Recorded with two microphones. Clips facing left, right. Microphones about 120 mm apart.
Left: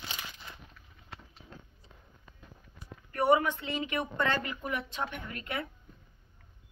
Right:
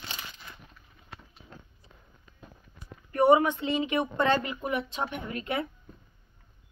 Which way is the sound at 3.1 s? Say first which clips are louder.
Right 5 dB; 20° right (ahead or behind).